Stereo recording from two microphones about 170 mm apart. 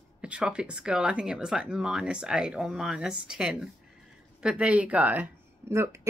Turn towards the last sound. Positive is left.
turn(degrees=-15)  # may be behind; listen again after turning